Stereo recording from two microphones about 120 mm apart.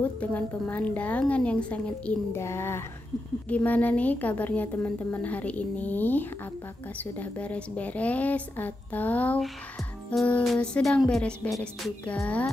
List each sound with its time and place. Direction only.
0.0 s a woman's voice: 15° left (ahead or behind)
2.3 s a woman's voice: 20° left (ahead or behind)
10.4 s music: 5° left (ahead or behind)